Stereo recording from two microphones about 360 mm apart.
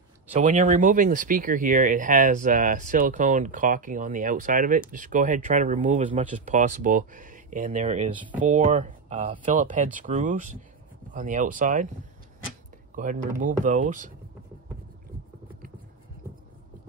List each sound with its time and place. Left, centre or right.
0.4 s speech: right
12.9 s speech: right